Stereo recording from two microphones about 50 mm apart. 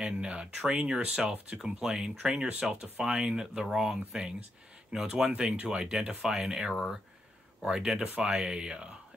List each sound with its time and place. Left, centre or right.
0.0 s speech: centre
5.0 s speech: right